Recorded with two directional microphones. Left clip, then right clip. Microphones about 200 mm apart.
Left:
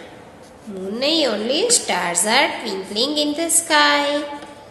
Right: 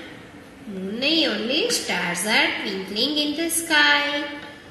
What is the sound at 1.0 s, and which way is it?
A woman's voice, 15° left (ahead or behind).